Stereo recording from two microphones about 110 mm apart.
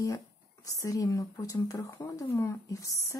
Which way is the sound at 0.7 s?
30° left (ahead or behind).